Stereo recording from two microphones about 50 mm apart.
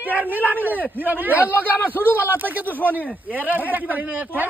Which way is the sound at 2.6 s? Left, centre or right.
Left.